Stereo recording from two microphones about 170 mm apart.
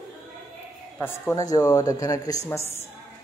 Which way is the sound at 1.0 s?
20° left (ahead or behind).